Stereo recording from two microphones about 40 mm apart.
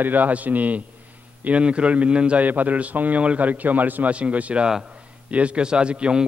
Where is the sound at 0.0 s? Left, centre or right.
Right.